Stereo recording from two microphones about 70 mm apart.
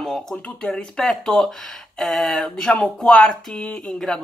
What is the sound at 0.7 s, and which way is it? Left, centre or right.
Speech, centre.